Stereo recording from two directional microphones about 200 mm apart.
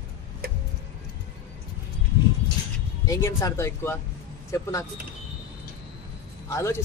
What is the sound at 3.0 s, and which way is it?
Speech, 15° left (ahead or behind).